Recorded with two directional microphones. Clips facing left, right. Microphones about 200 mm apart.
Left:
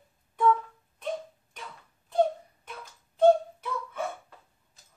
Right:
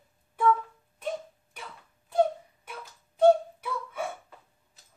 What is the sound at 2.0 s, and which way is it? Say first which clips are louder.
Wail: even; 10° right (ahead or behind).